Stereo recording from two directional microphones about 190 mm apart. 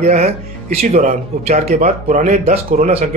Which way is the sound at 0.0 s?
35° right (ahead or behind).